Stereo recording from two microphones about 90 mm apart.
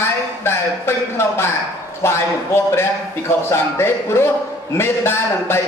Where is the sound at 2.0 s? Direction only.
30° left (ahead or behind).